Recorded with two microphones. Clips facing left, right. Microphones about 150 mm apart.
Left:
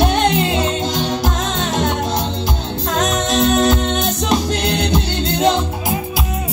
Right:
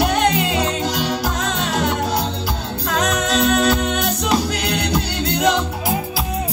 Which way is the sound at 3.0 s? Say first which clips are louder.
Left 2 dB; 20° left (ahead or behind).